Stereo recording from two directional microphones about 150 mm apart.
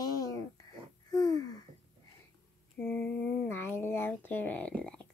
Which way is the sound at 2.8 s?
10° left (ahead or behind).